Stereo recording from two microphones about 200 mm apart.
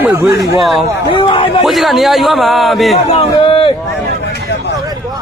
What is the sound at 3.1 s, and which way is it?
Speech, 25° left (ahead or behind).